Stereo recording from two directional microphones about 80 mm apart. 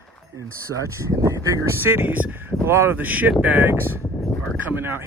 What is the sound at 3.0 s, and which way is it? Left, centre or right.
Speech, right.